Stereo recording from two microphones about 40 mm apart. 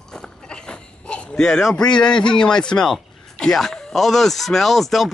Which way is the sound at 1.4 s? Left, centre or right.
Centre.